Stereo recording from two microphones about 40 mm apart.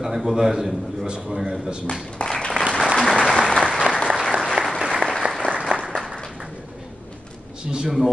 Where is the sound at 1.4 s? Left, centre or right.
Centre.